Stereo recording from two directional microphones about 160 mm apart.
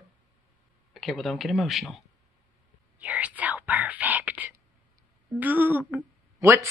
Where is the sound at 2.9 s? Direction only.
10° right (ahead or behind).